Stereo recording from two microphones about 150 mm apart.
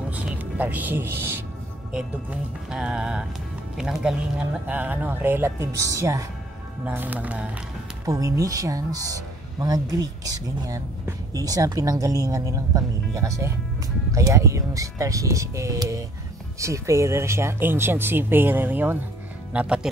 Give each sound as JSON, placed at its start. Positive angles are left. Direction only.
{"t": 0.1, "sound": "speech", "side_deg": -10}
{"t": 2.7, "sound": "speech", "side_deg": -5}
{"t": 8.0, "sound": "speech", "side_deg": -25}